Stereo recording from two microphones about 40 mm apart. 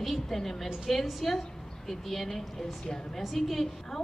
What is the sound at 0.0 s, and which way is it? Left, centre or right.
A woman's voice, centre.